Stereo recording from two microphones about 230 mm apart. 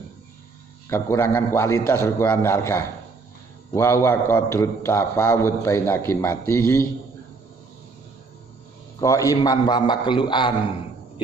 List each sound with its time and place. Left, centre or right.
0.8 s a man's voice: centre
9.0 s a man's voice: centre